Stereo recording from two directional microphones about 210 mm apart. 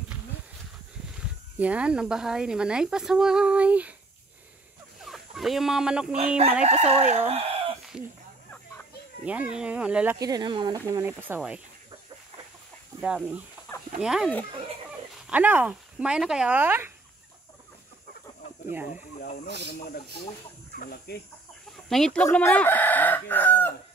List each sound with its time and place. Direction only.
1.6 s speech: 5° right (ahead or behind)
5.0 s speech: centre (ahead or behind)
6.1 s chicken: 30° right (ahead or behind)
7.9 s speech: 5° right (ahead or behind)
9.2 s speech: 5° right (ahead or behind)
10.1 s speech: 15° right (ahead or behind)
13.0 s speech: 5° right (ahead or behind)
19.4 s speech: 50° left (ahead or behind)
21.8 s chicken: centre (ahead or behind)